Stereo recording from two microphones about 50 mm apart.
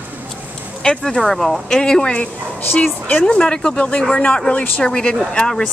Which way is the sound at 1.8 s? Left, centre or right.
Centre.